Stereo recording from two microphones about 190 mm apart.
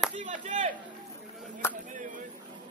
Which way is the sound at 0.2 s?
40° right (ahead or behind).